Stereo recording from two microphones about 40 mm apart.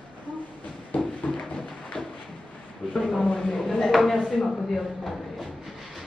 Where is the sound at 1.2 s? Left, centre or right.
Centre.